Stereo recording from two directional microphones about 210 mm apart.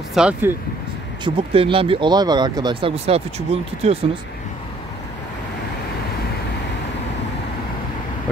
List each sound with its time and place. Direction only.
0.1 s speech: 5° right (ahead or behind)
1.2 s speech: 25° right (ahead or behind)